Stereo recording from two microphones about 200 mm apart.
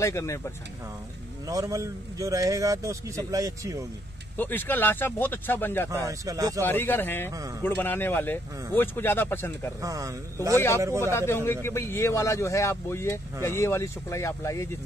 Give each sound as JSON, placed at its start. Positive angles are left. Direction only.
{"t": 0.0, "sound": "speech", "side_deg": 15}
{"t": 1.5, "sound": "a man's voice", "side_deg": -15}
{"t": 4.4, "sound": "speech", "side_deg": 10}
{"t": 5.9, "sound": "a man's voice", "side_deg": -15}
{"t": 6.6, "sound": "speech", "side_deg": 10}
{"t": 9.8, "sound": "a man's voice", "side_deg": -15}
{"t": 11.0, "sound": "speech", "side_deg": 10}